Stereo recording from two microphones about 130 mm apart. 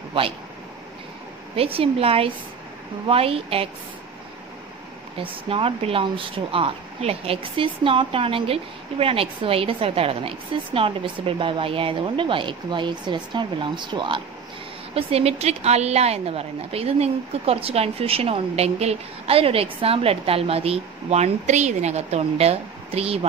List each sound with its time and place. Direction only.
1.5 s speech: 45° right (ahead or behind)
5.1 s speech: 45° right (ahead or behind)
15.0 s speech: 50° right (ahead or behind)